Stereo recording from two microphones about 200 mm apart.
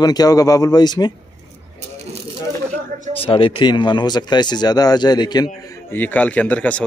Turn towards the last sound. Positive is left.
turn(degrees=5)  # may be behind; listen again after turning